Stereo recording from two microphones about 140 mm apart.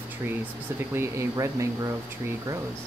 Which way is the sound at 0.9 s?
20° right (ahead or behind).